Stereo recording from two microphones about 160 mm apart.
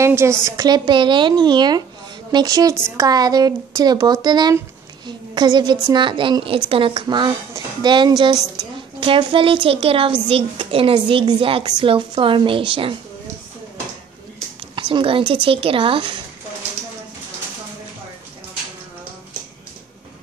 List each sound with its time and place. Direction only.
0.0 s a woman's voice: 15° right (ahead or behind); by 12.9 s 35° right (ahead or behind)
14.8 s speech: 30° right (ahead or behind)